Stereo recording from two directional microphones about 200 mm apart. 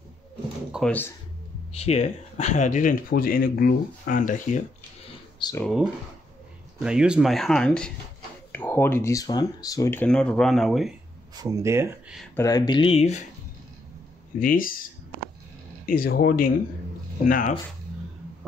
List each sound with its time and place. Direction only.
0.7 s speech: centre (ahead or behind)
1.7 s speech: 30° left (ahead or behind)
5.6 s speech: centre (ahead or behind)
11.3 s speech: 15° right (ahead or behind)
12.4 s speech: 20° left (ahead or behind)
14.4 s speech: 45° left (ahead or behind)
15.9 s speech: 45° left (ahead or behind)